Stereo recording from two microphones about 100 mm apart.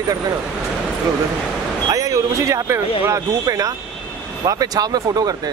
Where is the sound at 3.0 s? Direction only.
35° right (ahead or behind).